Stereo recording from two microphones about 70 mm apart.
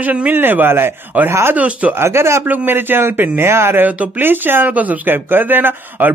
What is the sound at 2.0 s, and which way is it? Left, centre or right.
Speech, right.